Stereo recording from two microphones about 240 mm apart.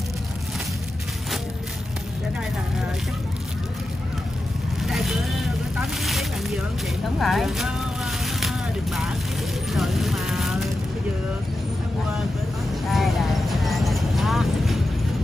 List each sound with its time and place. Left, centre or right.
4.8 s vehicle: centre
12.9 s clip-clop: centre